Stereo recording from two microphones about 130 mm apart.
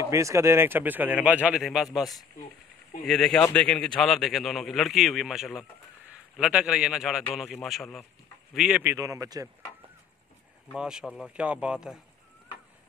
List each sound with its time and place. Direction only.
0.0 s speech: 25° right (ahead or behind); by 1.9 s centre (ahead or behind)
3.1 s speech: 5° left (ahead or behind)
8.8 s a man's voice: 25° right (ahead or behind)
10.8 s speech: 5° right (ahead or behind)